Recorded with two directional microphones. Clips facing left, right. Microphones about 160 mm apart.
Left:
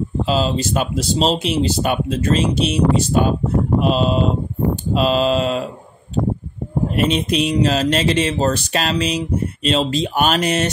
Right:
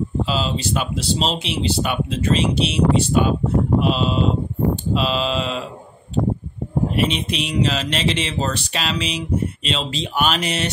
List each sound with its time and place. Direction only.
0.2 s speech: 40° left (ahead or behind)
7.0 s speech: 45° left (ahead or behind)